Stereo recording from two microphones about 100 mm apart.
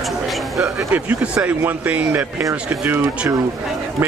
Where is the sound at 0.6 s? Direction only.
15° right (ahead or behind).